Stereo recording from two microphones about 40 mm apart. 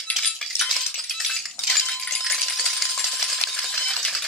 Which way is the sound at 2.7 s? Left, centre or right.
Centre.